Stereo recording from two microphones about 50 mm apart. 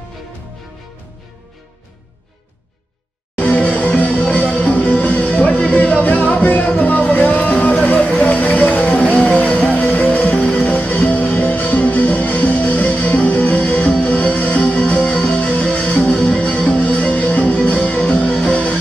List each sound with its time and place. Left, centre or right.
3.3 s music: left